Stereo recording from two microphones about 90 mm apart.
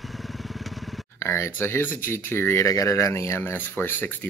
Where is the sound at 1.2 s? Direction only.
30° left (ahead or behind).